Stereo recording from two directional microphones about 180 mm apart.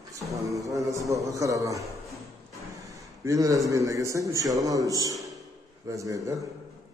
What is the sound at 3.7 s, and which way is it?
A man's voice, 15° right (ahead or behind).